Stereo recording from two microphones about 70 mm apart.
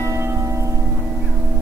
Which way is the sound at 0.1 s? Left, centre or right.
Right.